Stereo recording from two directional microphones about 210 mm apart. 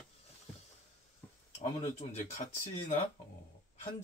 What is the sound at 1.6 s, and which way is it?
Speech, 30° left (ahead or behind).